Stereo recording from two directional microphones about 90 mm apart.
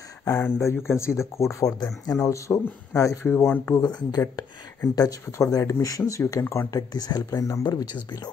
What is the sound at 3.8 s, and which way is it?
Speech, 50° left (ahead or behind).